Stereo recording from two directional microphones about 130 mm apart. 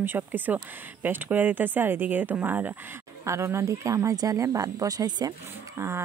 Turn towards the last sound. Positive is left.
turn(degrees=-20)  # may be behind; listen again after turning